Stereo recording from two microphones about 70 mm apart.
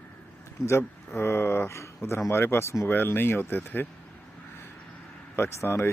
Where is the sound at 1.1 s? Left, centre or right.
Left.